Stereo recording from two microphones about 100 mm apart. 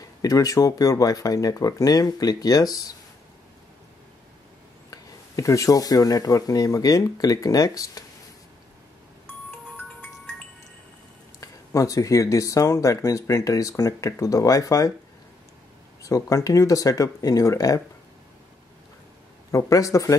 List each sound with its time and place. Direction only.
0.2 s speech: 35° left (ahead or behind)
4.9 s speech: 35° left (ahead or behind)
11.3 s speech: 35° left (ahead or behind)
16.0 s speech: 35° left (ahead or behind)
19.5 s speech: 30° left (ahead or behind)